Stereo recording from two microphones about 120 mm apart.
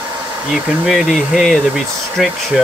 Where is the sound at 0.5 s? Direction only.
Centre (ahead or behind).